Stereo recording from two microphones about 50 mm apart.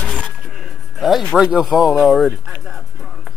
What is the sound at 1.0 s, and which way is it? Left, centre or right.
Speech, centre.